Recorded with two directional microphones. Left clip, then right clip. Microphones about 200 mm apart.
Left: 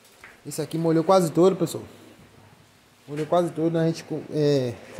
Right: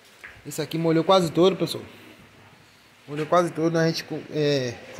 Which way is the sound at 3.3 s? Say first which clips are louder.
Right 1 dB; 15° left (ahead or behind).